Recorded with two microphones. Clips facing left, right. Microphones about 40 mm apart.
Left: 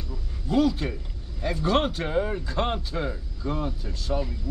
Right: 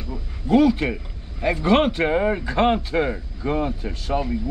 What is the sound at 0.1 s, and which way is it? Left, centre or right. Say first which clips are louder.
Speech: right 7 dB; right.